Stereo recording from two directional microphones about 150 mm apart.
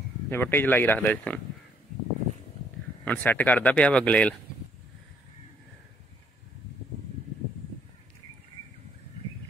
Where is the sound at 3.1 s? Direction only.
10° left (ahead or behind).